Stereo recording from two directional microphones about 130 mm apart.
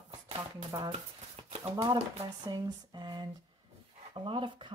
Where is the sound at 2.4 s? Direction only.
35° right (ahead or behind).